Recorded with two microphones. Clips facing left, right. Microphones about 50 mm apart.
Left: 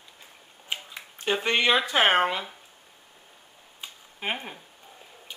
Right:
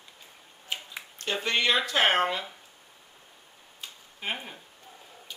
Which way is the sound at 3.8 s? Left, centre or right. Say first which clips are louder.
Left 3 dB; centre.